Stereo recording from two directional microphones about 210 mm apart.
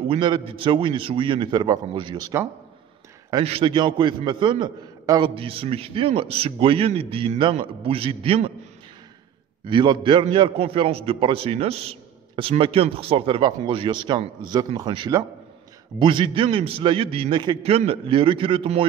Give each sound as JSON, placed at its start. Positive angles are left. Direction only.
{"t": 0.1, "sound": "a man's voice", "side_deg": -25}
{"t": 9.7, "sound": "a man's voice", "side_deg": -20}